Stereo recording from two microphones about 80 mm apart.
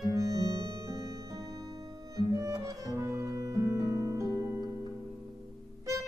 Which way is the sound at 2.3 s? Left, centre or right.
Right.